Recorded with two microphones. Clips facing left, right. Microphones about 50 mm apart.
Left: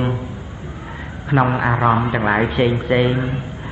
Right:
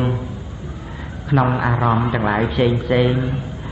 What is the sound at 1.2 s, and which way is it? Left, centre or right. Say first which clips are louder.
A man's voice: left 1 dB; left.